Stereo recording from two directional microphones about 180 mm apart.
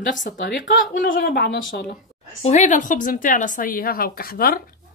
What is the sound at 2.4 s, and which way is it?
A woman's voice, 40° left (ahead or behind).